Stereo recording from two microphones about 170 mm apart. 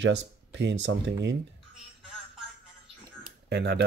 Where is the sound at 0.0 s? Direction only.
90° right.